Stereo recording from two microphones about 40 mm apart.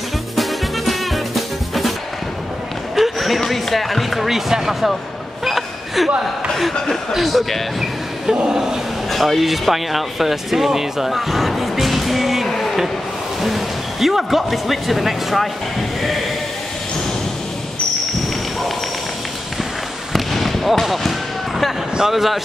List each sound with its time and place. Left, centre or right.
0.4 s music: centre
3.0 s speech: centre
5.4 s a sound: centre
7.1 s speech: centre
8.3 s speech: centre
9.1 s speech: centre
20.1 s a sound: centre
22.1 s speech: centre